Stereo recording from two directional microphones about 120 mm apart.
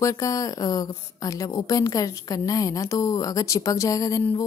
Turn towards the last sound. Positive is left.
turn(degrees=30)  # may be behind; listen again after turning